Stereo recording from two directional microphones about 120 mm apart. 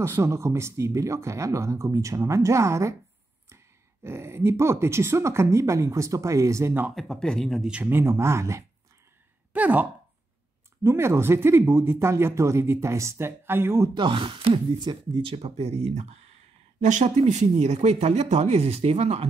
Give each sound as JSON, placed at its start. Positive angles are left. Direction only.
{"t": 0.0, "sound": "speech", "side_deg": -25}
{"t": 7.0, "sound": "speech", "side_deg": 5}
{"t": 7.7, "sound": "speech", "side_deg": -15}
{"t": 9.5, "sound": "speech", "side_deg": -15}
{"t": 10.8, "sound": "speech", "side_deg": -25}
{"t": 13.9, "sound": "speech", "side_deg": -45}
{"t": 16.8, "sound": "speech", "side_deg": -80}